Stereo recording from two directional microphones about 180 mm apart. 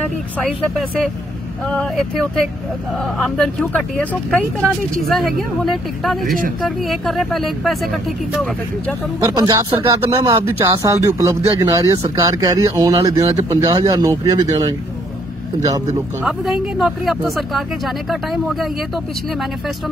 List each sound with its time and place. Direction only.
0.0 s speech: 5° left (ahead or behind)
3.0 s speech: 5° left (ahead or behind)
9.2 s speech: 20° right (ahead or behind)
16.3 s speech: centre (ahead or behind)